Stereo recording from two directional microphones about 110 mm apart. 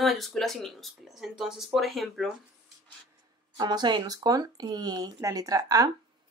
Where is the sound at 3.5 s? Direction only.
40° right (ahead or behind).